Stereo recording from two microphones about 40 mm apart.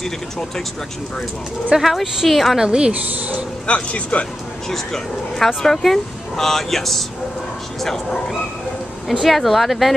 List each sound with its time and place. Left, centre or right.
1.8 s speech: centre
2.5 s a woman's voice: centre
2.9 s speech: right
3.6 s speech: left
4.6 s speech: centre
9.2 s speech: centre